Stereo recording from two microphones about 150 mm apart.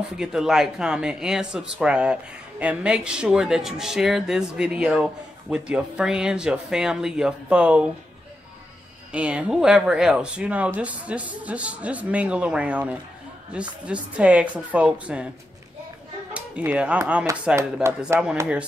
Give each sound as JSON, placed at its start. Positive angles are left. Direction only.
{"t": 0.1, "sound": "speech", "side_deg": -5}
{"t": 9.1, "sound": "a man's voice", "side_deg": -5}
{"t": 16.3, "sound": "a man's voice", "side_deg": -10}
{"t": 18.1, "sound": "a man's voice", "side_deg": -15}